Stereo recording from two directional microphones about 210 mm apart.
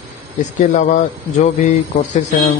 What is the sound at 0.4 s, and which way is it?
Speech, 35° left (ahead or behind).